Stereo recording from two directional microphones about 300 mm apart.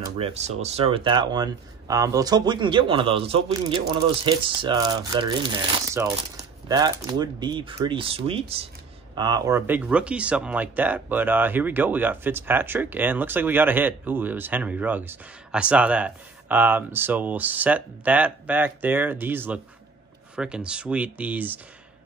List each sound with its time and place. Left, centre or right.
0.2 s speech: right; by 21.5 s centre